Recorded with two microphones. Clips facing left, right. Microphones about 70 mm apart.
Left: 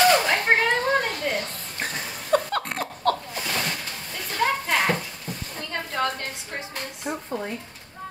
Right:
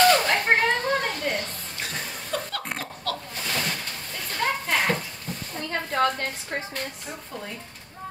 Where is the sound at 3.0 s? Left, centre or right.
Left.